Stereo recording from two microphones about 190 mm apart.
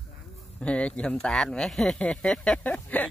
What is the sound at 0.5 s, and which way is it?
Speech, 5° left (ahead or behind).